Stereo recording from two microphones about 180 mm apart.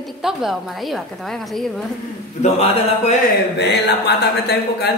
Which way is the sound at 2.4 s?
35° left (ahead or behind).